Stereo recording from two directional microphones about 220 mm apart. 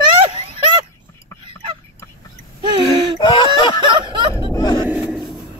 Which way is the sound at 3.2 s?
20° left (ahead or behind).